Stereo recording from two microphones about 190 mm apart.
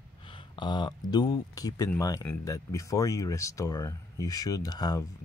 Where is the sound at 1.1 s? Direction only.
20° left (ahead or behind).